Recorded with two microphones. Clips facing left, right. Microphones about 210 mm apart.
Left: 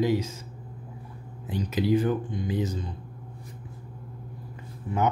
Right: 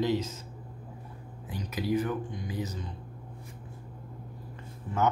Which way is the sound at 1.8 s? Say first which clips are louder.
Left 4 dB; 30° left (ahead or behind).